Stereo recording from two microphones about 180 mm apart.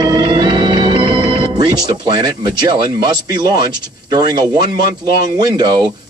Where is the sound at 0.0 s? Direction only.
25° right (ahead or behind).